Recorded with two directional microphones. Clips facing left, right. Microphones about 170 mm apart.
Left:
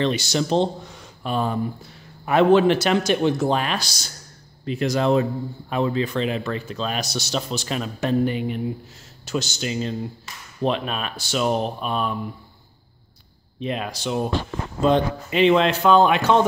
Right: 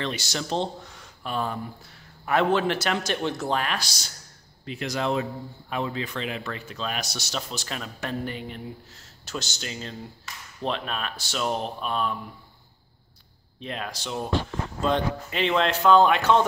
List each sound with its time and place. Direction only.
0.0 s speech: 20° left (ahead or behind)
4.6 s speech: 40° left (ahead or behind); by 12.2 s 15° left (ahead or behind)
13.6 s speech: 15° left (ahead or behind)